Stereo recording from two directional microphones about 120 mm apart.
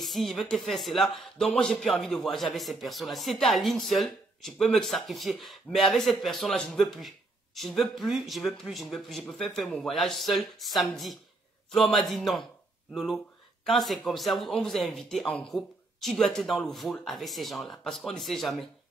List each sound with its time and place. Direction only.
0.0 s speech: centre (ahead or behind)